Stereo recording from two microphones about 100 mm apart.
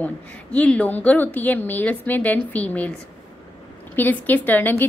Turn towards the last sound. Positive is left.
turn(degrees=15)  # may be behind; listen again after turning